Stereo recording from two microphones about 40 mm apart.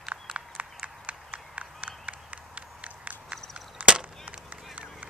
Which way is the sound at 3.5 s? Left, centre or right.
Right.